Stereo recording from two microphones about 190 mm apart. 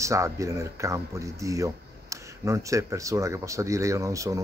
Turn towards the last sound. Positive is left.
turn(degrees=-15)  # may be behind; listen again after turning